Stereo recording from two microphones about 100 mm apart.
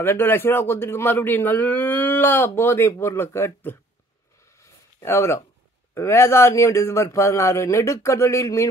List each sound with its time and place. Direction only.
0.0 s speech: 20° left (ahead or behind)
4.6 s a sound: 25° left (ahead or behind)
5.9 s speech: 25° left (ahead or behind)